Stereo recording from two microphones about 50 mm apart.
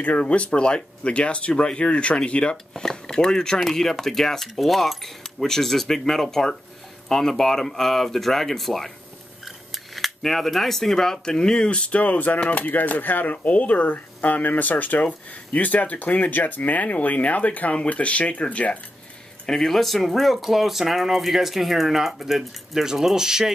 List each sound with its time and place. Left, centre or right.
0.0 s speech: left
2.5 s speech: centre
9.4 s cutlery: centre; by 12.0 s left
12.0 s speech: left
19.4 s speech: centre